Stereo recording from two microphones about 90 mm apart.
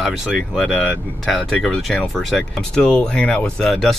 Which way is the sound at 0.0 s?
5° right (ahead or behind).